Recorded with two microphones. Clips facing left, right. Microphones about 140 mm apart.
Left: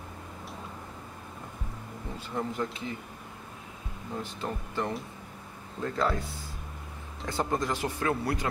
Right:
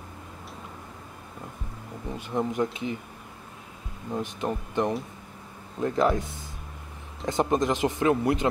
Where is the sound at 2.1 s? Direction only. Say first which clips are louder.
Right 6 dB; 15° right (ahead or behind).